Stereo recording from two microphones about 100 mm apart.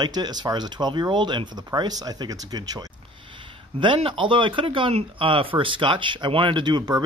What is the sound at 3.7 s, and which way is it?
Speech, 55° right (ahead or behind).